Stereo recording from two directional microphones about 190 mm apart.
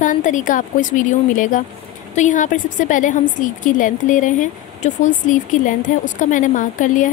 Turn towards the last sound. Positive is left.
turn(degrees=40)  # may be behind; listen again after turning